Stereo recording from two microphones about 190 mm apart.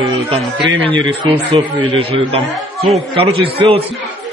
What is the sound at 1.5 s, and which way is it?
A man's voice, 30° right (ahead or behind).